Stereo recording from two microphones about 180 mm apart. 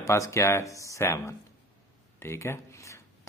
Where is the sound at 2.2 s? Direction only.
15° left (ahead or behind).